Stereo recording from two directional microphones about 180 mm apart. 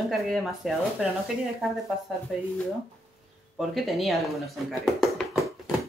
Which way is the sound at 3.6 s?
Centre (ahead or behind).